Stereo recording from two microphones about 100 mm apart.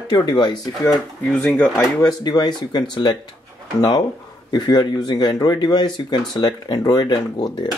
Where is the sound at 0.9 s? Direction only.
5° left (ahead or behind).